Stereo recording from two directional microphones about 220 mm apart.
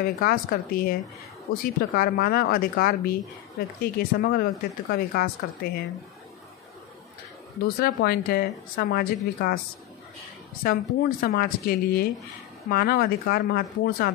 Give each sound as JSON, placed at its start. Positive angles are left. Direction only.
{"t": 0.0, "sound": "speech", "side_deg": 40}
{"t": 7.6, "sound": "speech", "side_deg": 45}
{"t": 10.6, "sound": "speech", "side_deg": 40}